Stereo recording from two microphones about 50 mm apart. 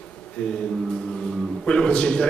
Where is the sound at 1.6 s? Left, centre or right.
Centre.